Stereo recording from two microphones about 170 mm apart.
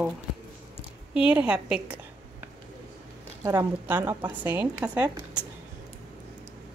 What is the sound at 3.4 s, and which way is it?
A woman's voice, 15° right (ahead or behind).